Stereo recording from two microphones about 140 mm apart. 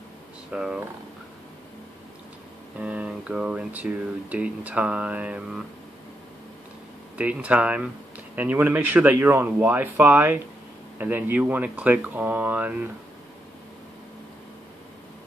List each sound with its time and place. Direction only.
0.5 s speech: 5° right (ahead or behind)
2.8 s speech: 10° right (ahead or behind)
7.2 s speech: 10° right (ahead or behind)